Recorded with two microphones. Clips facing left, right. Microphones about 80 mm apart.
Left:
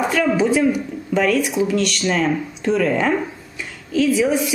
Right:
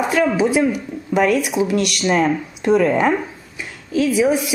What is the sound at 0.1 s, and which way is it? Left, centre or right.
A woman's voice, centre.